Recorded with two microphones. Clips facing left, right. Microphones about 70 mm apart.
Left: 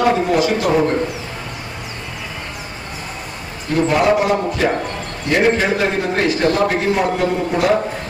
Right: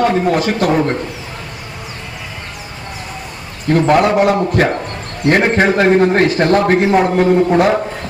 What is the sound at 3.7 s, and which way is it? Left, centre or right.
Speech, right.